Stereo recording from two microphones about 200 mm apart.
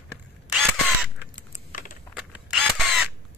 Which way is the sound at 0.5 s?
5° left (ahead or behind).